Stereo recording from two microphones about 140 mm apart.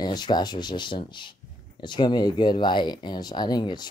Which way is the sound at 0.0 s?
30° left (ahead or behind).